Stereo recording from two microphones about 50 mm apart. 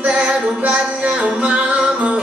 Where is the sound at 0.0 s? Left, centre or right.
Right.